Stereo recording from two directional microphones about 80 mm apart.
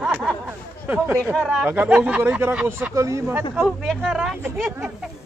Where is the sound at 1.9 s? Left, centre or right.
Centre.